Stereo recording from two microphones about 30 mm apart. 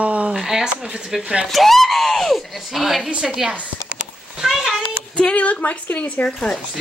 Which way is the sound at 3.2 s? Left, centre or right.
Centre.